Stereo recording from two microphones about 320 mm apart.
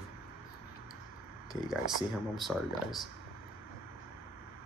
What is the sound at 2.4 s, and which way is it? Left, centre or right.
Speech, centre.